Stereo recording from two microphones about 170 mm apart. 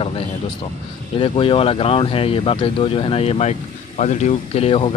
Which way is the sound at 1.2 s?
30° left (ahead or behind).